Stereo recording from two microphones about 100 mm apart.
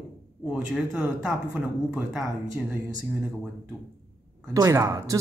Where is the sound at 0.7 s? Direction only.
5° right (ahead or behind).